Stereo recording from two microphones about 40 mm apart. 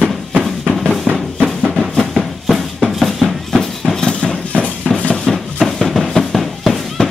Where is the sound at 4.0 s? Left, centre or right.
Centre.